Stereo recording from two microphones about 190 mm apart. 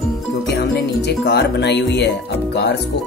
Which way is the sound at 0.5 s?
60° left (ahead or behind).